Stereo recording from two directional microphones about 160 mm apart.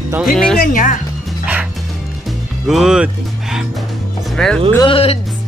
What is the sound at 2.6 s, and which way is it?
Music, 5° right (ahead or behind).